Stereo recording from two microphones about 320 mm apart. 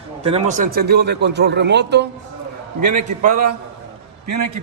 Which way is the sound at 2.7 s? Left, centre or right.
Right.